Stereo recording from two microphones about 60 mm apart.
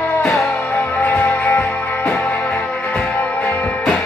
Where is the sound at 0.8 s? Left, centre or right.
Left.